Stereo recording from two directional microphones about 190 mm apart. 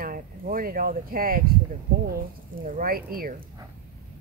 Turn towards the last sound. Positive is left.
turn(degrees=-50)  # may be behind; listen again after turning